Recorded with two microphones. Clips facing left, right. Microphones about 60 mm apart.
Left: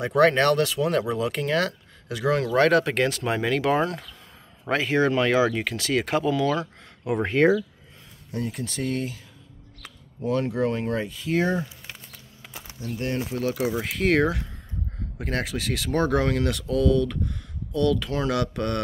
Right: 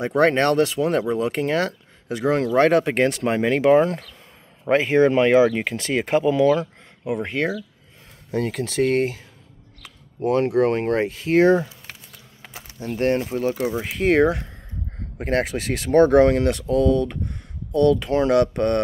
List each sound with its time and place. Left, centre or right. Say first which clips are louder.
0.2 s speech: right 1 dB; right
7.2 s speech: left 4 dB; centre
8.4 s speech: right 8 dB; right
10.2 s speech: right 6 dB; right
12.7 s speech: right 8 dB; right
13.7 s speech: right 5 dB; centre
15.1 s speech: right 6 dB; right